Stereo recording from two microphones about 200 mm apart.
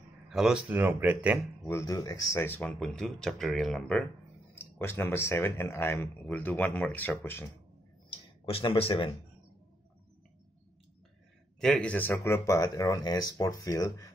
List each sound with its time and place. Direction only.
0.3 s speech: 5° right (ahead or behind)
1.7 s speech: 15° left (ahead or behind)
8.5 s speech: 30° left (ahead or behind)
11.6 s speech: 5° left (ahead or behind)